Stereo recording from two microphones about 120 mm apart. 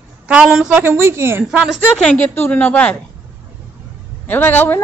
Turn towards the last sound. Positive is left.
turn(degrees=15)  # may be behind; listen again after turning